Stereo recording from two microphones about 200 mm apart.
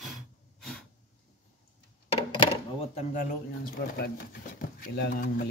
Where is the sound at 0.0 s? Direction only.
Centre (ahead or behind).